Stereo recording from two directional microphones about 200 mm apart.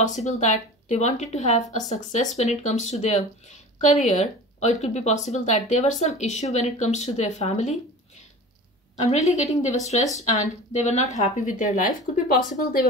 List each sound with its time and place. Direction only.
0.0 s speech: 35° left (ahead or behind)
8.9 s speech: 35° left (ahead or behind)